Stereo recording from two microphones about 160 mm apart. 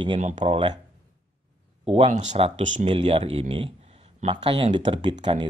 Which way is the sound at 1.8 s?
40° right (ahead or behind).